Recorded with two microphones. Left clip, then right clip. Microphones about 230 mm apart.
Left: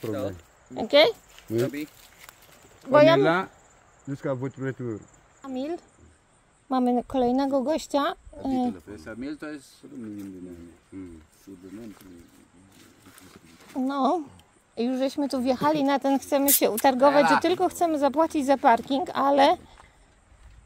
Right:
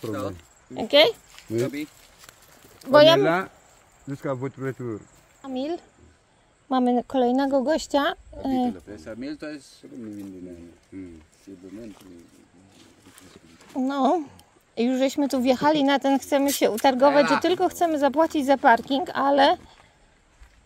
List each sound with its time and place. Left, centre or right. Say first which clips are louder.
0.3 s speech: right 1 dB; centre
2.8 s a woman's voice: right 3 dB; centre
3.2 s speech: right 1 dB; left
4.1 s speech: right 1 dB; centre
5.4 s a woman's voice: right 2 dB; centre
10.9 s speech: right 1 dB; centre
13.7 s a woman's voice: right 2 dB; centre
17.1 s speech: even; left
17.4 s speech: right 1 dB; centre